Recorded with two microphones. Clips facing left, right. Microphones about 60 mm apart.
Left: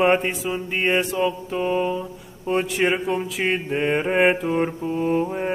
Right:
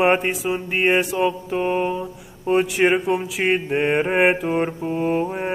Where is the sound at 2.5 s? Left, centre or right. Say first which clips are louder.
Right 4 dB; centre.